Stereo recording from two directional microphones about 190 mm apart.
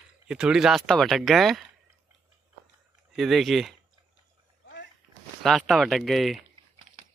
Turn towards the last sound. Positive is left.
turn(degrees=0)  # may be behind; listen again after turning